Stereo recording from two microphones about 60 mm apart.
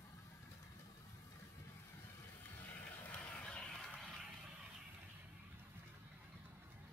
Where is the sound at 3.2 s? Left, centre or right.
Left.